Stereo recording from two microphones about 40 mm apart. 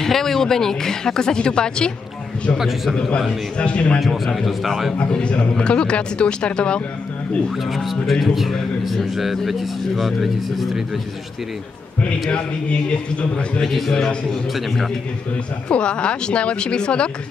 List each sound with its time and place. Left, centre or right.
0.0 s speech: centre
3.5 s a man's voice: left
4.1 s a man's voice: centre
5.5 s a man's voice: left
7.7 s a man's voice: centre
12.0 s a man's voice: left
13.6 s speech: centre
15.7 s a man's voice: left